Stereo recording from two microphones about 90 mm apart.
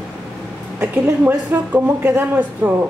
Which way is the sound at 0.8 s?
25° right (ahead or behind).